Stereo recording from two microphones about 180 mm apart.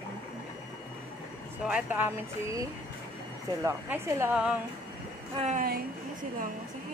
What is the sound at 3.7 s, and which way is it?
Speech, 15° right (ahead or behind).